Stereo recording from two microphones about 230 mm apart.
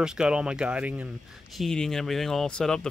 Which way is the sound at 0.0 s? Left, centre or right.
Centre.